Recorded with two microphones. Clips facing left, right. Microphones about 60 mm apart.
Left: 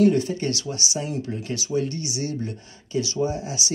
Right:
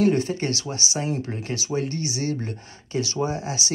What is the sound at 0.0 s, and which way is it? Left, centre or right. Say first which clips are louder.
Speech: left 2 dB; right.